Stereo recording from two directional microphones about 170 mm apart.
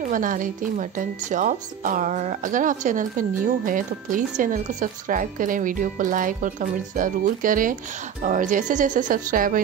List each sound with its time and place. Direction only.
0.1 s speech: 50° right (ahead or behind)